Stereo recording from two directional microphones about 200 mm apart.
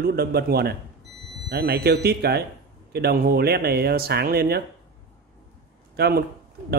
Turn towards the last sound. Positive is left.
turn(degrees=-55)  # may be behind; listen again after turning